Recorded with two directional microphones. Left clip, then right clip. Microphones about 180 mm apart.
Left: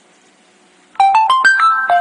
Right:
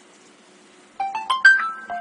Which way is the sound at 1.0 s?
55° left (ahead or behind).